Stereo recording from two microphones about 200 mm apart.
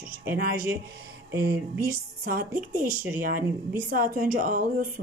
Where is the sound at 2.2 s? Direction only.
50° right (ahead or behind).